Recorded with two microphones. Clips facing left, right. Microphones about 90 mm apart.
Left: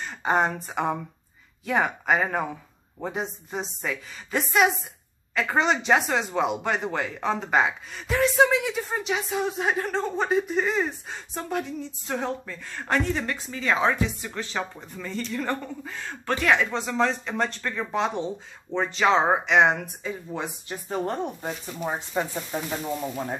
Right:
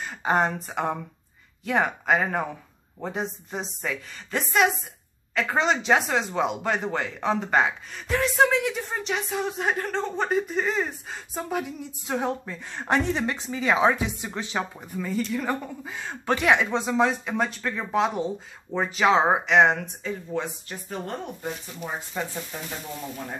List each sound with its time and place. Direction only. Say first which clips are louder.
0.0 s speech: even; centre (ahead or behind); by 21.0 s 20° left (ahead or behind)
21.0 s speech: left 4 dB; 35° left (ahead or behind)
22.2 s speech: left 4 dB; 15° left (ahead or behind)
22.5 s speech: left 10 dB; 25° left (ahead or behind)